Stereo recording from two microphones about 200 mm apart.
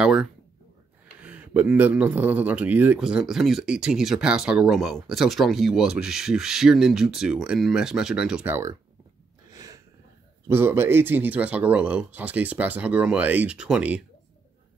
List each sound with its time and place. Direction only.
0.0 s a man's voice: centre (ahead or behind)
9.5 s a sound: 15° right (ahead or behind)
10.5 s speech: 10° right (ahead or behind)